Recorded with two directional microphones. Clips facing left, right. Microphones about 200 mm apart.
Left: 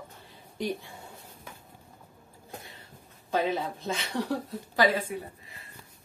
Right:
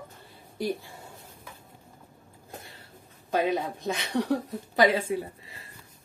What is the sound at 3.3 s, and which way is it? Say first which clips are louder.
Speech: right 2 dB; 15° right (ahead or behind).